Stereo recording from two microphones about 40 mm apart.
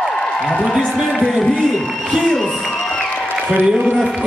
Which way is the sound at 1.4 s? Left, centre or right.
Centre.